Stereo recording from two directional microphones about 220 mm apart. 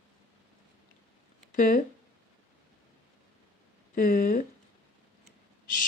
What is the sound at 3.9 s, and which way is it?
Speech, 40° left (ahead or behind).